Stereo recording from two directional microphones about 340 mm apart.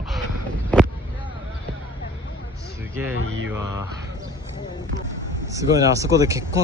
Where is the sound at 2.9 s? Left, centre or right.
Centre.